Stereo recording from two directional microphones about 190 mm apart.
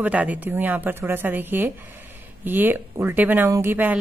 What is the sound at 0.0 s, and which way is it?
A woman's voice, 10° right (ahead or behind).